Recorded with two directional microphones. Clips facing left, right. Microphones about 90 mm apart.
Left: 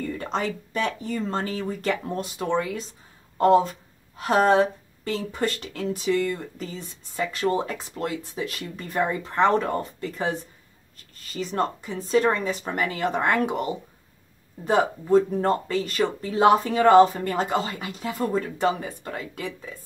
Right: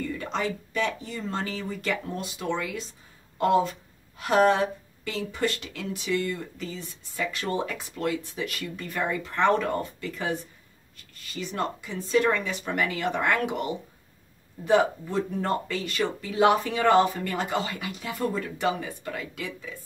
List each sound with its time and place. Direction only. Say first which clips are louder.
0.2 s speech: left 2 dB; 40° left (ahead or behind)
11.3 s speech: left 4 dB; 40° left (ahead or behind)
14.7 s speech: left 3 dB; 40° left (ahead or behind)